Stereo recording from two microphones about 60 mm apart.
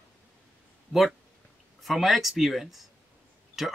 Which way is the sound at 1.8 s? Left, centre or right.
Centre.